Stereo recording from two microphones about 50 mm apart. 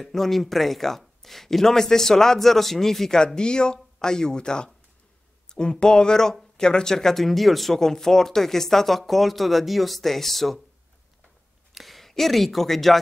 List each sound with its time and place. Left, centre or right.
0.0 s speech: centre
11.7 s speech: centre